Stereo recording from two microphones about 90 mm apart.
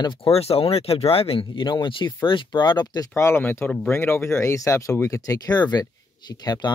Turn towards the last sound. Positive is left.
turn(degrees=50)  # may be behind; listen again after turning